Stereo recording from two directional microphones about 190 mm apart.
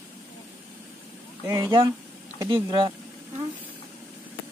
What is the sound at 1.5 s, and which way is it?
Speech, 15° right (ahead or behind).